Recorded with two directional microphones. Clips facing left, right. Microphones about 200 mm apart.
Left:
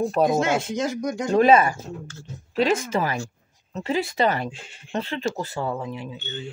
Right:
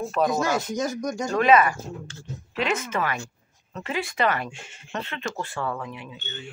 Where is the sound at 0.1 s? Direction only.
25° left (ahead or behind).